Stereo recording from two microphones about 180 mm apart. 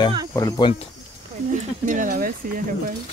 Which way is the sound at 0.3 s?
20° left (ahead or behind).